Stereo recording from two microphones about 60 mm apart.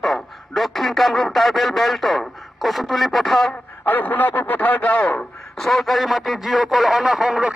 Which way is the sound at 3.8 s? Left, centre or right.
Left.